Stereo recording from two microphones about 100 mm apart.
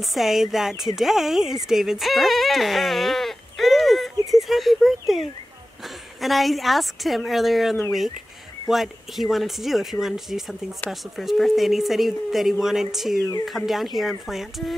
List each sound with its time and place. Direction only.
0.1 s speech: centre (ahead or behind)
6.2 s speech: centre (ahead or behind)